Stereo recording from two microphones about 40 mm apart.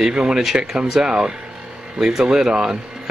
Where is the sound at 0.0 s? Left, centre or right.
Right.